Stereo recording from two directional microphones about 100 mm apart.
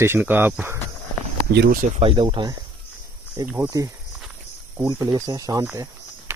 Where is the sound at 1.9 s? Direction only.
60° right (ahead or behind).